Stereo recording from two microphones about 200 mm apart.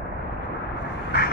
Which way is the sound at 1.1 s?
55° left (ahead or behind).